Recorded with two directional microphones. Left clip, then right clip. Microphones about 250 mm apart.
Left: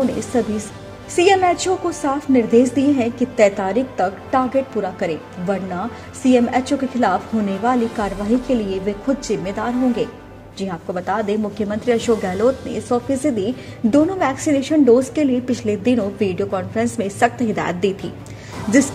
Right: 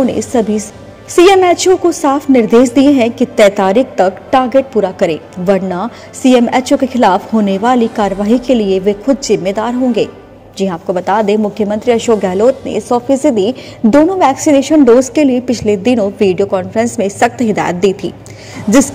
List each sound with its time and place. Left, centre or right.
0.2 s a woman's voice: right